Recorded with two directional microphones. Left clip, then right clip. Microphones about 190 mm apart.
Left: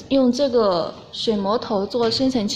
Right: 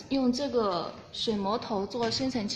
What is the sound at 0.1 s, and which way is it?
A woman's voice, 35° left (ahead or behind).